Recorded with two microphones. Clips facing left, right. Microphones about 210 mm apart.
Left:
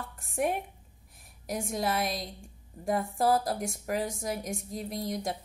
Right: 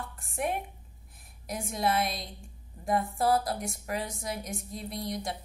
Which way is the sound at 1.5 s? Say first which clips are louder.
Right 1 dB; 45° left (ahead or behind).